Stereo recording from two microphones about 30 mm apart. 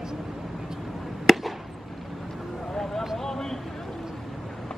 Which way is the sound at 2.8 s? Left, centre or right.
Centre.